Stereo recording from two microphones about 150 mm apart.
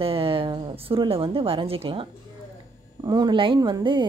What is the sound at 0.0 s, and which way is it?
A woman's voice, 40° right (ahead or behind).